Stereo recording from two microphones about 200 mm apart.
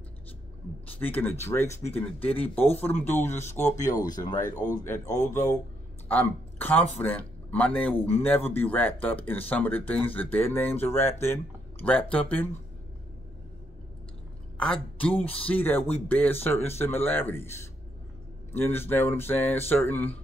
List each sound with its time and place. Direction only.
0.9 s speech: 10° left (ahead or behind)
14.6 s speech: 5° left (ahead or behind)
18.5 s speech: 10° left (ahead or behind)